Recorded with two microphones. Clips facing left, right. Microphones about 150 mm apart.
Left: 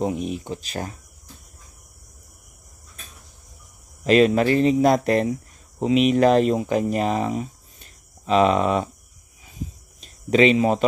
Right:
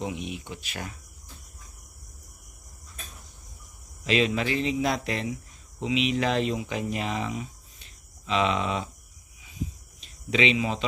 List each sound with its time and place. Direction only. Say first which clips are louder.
0.0 s speech: left 8 dB; 40° left (ahead or behind)
4.0 s speech: left 9 dB; 45° left (ahead or behind)
9.4 s a sound: even; 45° left (ahead or behind)